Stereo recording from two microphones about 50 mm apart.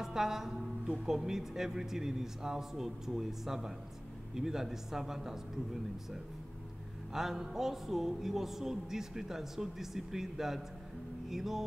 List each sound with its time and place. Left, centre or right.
0.0 s a man's voice: centre
7.2 s a man's voice: centre